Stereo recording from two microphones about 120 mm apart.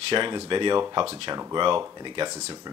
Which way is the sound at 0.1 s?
40° right (ahead or behind).